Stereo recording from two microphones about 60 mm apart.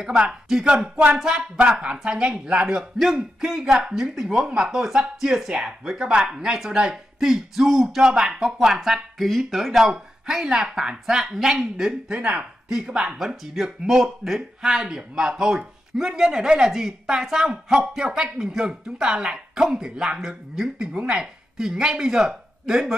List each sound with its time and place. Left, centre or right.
0.0 s speech: centre
0.9 s speech: right; by 12.2 s centre
12.2 s speech: centre